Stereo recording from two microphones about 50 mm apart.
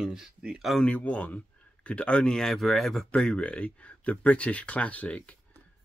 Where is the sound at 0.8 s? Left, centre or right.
Left.